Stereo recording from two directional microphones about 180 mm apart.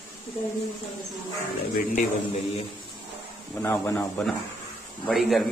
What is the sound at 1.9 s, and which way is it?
Speech, 35° left (ahead or behind).